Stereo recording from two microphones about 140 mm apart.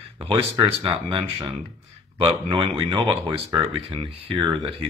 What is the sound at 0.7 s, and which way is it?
Speech, 40° right (ahead or behind).